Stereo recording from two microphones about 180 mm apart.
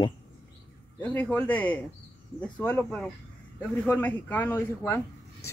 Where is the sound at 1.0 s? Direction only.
10° left (ahead or behind).